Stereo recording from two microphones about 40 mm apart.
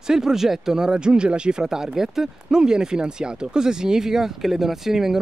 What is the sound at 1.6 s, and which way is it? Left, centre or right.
Speech, centre.